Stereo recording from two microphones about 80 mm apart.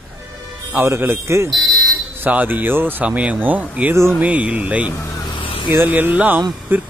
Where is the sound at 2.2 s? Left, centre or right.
Right.